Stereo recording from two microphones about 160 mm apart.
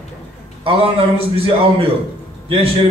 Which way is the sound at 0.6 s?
35° right (ahead or behind).